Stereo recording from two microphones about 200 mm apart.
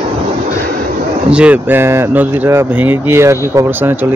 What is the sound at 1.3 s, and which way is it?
Speech, 5° right (ahead or behind).